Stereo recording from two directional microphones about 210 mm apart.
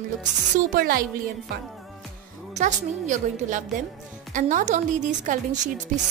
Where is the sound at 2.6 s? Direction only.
35° right (ahead or behind).